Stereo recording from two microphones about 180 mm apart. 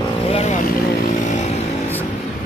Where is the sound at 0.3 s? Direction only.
35° left (ahead or behind).